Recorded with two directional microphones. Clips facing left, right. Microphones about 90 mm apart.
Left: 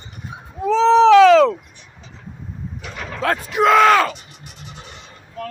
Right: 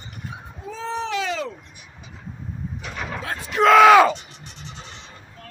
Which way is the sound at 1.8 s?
10° right (ahead or behind).